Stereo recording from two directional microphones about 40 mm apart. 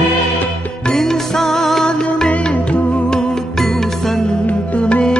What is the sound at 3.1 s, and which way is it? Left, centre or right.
Music, centre.